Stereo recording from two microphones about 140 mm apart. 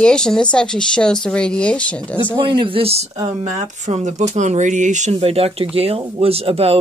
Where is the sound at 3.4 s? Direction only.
55° right (ahead or behind).